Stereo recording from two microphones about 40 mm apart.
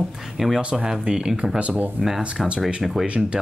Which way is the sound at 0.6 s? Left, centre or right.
Right.